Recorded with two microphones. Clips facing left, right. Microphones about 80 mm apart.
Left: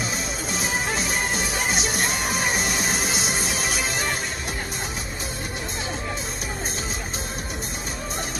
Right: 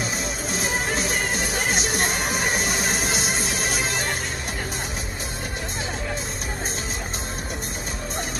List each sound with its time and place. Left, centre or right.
0.6 s music: right